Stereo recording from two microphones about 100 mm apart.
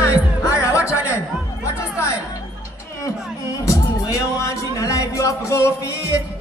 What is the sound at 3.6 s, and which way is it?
Music, 35° left (ahead or behind).